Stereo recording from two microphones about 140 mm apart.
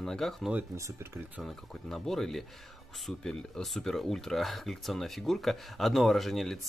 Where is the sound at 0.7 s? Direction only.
20° right (ahead or behind).